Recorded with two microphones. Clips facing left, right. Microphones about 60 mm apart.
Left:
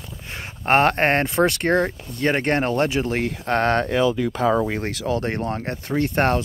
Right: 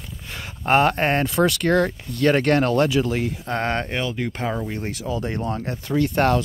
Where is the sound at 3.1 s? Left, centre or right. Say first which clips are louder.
Left 3 dB; left.